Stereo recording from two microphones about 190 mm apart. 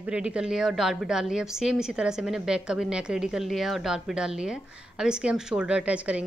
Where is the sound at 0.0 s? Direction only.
5° right (ahead or behind).